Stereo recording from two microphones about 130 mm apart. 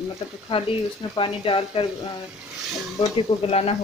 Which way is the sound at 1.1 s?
40° left (ahead or behind).